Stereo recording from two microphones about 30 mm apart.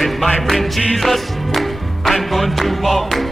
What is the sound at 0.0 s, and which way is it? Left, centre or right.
Music, centre.